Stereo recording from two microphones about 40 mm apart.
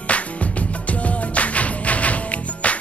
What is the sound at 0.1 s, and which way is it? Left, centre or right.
Music, left.